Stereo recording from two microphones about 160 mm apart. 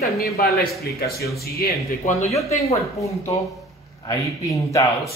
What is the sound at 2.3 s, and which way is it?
Speech, 20° left (ahead or behind).